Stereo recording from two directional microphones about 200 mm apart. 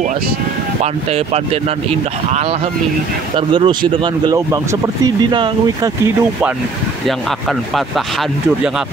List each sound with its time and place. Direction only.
1.1 s speech: 30° right (ahead or behind)
3.3 s speech: 25° right (ahead or behind)
7.1 s speech: centre (ahead or behind)